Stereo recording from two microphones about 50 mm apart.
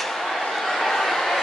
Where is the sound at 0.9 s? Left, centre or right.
Centre.